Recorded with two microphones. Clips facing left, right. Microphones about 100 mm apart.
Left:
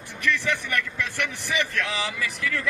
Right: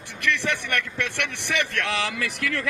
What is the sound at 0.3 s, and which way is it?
A man's voice, 75° right (ahead or behind).